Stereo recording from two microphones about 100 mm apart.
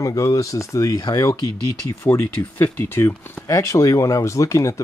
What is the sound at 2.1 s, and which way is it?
Speech, 15° left (ahead or behind).